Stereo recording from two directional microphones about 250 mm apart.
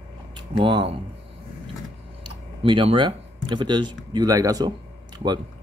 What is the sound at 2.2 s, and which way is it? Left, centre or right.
Speech, centre.